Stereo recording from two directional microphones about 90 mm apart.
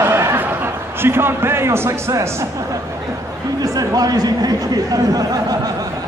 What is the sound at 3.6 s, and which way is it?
Speech, 45° right (ahead or behind).